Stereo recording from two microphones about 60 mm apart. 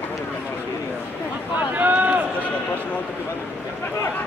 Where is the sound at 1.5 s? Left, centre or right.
Right.